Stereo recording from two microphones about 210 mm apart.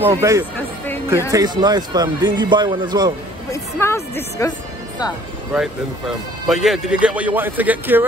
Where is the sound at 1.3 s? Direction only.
20° right (ahead or behind).